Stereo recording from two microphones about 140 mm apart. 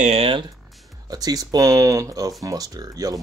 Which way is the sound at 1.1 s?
25° right (ahead or behind).